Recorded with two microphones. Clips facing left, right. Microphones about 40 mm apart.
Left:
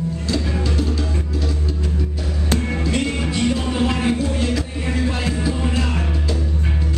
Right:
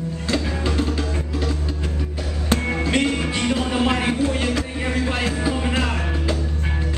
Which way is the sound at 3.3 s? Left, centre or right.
Right.